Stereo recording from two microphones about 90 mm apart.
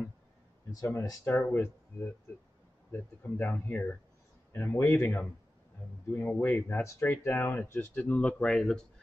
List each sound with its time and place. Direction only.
0.7 s speech: 35° left (ahead or behind)
6.8 s speech: 35° left (ahead or behind)
7.1 s speech: 20° left (ahead or behind); by 8.8 s 5° left (ahead or behind)